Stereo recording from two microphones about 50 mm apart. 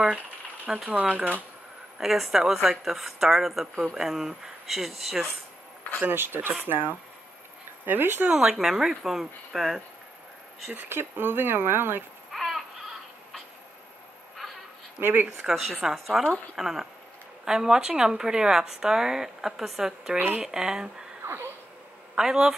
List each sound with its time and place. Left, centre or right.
0.8 s speech: right
2.0 s speech: centre
6.0 s speech: right
8.3 s a woman's voice: centre
10.7 s speech: right
12.3 s baby cry: centre
15.0 s speech: right
15.3 s a woman's voice: centre
22.1 s a woman's voice: centre